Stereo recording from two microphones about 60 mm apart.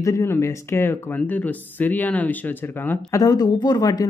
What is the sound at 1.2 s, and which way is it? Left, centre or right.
Speech, left.